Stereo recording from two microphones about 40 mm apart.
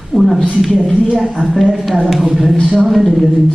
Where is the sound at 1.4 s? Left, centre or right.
Centre.